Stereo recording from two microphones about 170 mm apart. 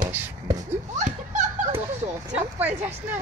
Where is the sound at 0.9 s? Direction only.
45° right (ahead or behind).